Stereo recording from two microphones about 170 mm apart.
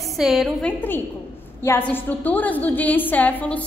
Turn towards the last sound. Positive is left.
turn(degrees=10)  # may be behind; listen again after turning